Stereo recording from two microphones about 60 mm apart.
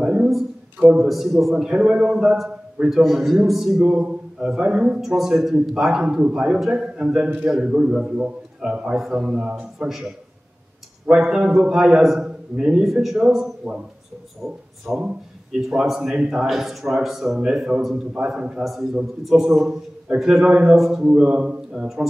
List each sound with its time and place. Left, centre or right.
0.0 s a sound: centre
0.9 s a man's voice: centre
2.8 s a man's voice: centre
3.8 s a sound: centre
4.6 s speech: centre
5.0 s a man's voice: centre
11.1 s a man's voice: centre
14.9 s a man's voice: centre
16.4 s a man's voice: centre
18.6 s a man's voice: centre
20.7 s a man's voice: centre
21.1 s a man's voice: centre